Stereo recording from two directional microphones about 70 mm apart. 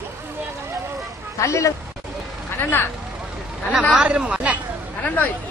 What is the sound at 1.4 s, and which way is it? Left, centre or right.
Speech, left.